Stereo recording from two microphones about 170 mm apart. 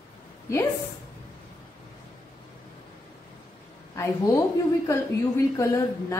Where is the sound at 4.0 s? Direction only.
20° left (ahead or behind).